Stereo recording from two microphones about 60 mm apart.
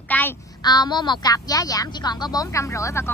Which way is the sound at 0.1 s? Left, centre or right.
Left.